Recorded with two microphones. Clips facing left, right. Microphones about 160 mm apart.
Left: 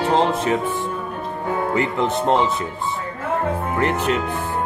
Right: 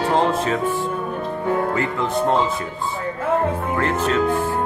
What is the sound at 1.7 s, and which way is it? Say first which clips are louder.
Speech: left 1 dB; 20° left (ahead or behind).